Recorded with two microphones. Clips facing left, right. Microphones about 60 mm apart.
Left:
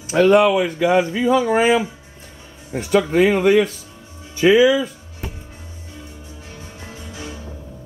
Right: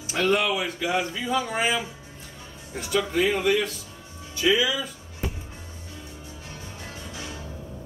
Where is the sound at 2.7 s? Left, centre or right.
Left.